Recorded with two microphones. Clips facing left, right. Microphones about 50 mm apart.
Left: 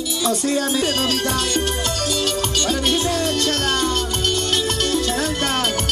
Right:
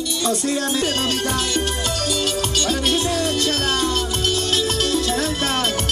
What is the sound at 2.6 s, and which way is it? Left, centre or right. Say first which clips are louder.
Music: left 1 dB; centre.